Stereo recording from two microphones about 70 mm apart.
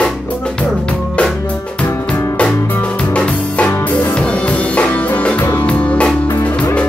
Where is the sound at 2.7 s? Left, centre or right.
Left.